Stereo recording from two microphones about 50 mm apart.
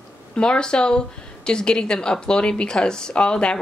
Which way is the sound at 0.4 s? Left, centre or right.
Centre.